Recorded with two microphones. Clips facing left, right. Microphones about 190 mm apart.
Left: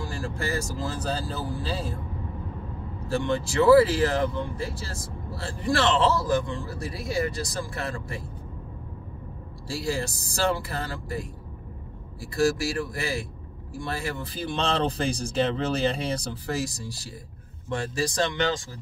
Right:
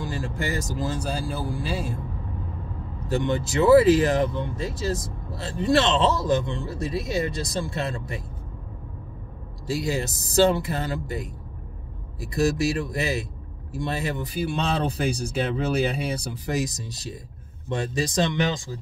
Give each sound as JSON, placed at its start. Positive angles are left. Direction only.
{"t": 0.0, "sound": "speech", "side_deg": -20}
{"t": 3.1, "sound": "speech", "side_deg": -20}
{"t": 9.7, "sound": "speech", "side_deg": -20}